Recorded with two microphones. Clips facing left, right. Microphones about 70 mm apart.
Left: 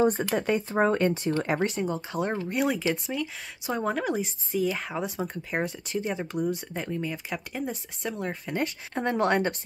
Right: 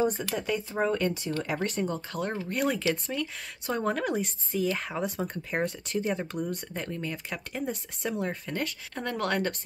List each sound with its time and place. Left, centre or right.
0.2 s speech: left
1.8 s speech: centre
2.5 s speech: centre
8.9 s speech: left